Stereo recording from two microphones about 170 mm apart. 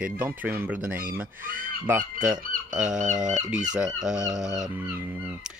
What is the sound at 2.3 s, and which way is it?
Fowl, 50° right (ahead or behind).